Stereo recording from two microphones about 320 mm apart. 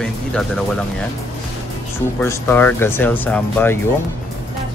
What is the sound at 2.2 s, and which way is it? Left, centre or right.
Speech, centre.